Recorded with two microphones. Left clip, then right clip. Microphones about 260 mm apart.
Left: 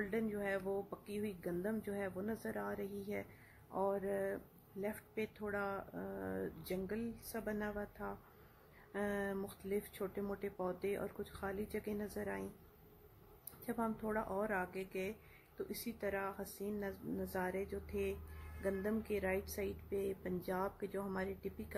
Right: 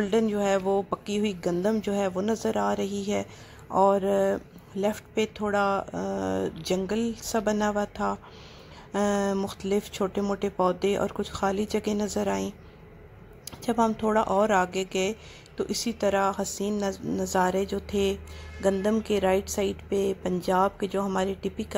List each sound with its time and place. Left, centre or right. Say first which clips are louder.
0.0 s speech: right 15 dB; centre
13.7 s speech: right 16 dB; centre
18.6 s speech: right 15 dB; centre